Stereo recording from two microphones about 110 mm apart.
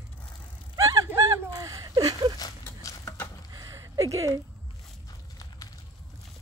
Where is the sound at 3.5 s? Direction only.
35° right (ahead or behind).